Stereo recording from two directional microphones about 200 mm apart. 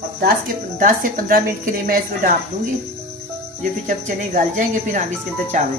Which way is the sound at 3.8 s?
40° right (ahead or behind).